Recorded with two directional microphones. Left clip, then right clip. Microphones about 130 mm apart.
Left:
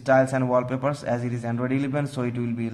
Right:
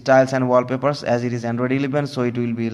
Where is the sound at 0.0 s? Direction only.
25° right (ahead or behind).